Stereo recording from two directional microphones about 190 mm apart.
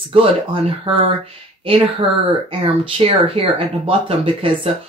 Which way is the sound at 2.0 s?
30° right (ahead or behind).